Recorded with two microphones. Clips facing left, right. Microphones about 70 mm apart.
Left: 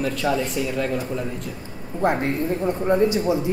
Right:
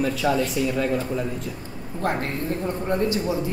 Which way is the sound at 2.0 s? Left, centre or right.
Centre.